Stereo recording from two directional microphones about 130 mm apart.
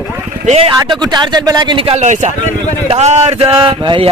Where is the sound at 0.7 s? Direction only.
35° right (ahead or behind).